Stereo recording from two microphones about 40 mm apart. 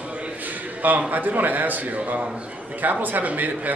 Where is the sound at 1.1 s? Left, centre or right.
Right.